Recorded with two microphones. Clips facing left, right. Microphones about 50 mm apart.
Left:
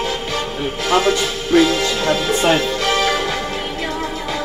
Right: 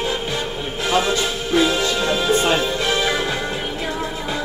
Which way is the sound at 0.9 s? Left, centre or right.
Left.